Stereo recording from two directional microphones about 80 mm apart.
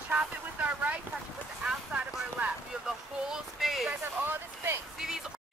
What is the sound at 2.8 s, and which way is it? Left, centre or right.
Speech, centre.